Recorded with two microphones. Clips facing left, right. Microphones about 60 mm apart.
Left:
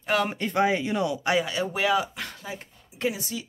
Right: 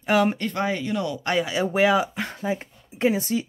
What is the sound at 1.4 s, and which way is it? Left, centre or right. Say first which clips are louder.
Speech: right 5 dB; centre.